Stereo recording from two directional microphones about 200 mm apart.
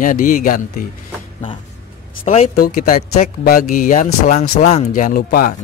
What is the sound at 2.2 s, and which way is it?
Speech, 30° left (ahead or behind).